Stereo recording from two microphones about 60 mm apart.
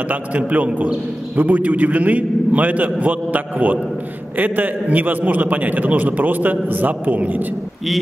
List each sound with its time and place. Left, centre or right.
0.1 s a man's voice: right